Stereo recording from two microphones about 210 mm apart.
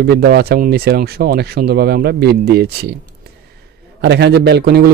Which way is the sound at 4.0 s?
55° right (ahead or behind).